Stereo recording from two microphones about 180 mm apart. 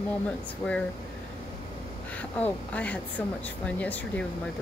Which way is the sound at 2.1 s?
10° left (ahead or behind).